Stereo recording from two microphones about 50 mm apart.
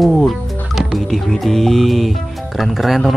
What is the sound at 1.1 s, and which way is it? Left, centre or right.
Speech, centre.